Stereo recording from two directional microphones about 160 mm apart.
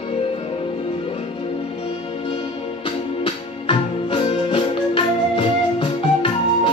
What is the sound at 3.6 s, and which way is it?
Music, 35° left (ahead or behind).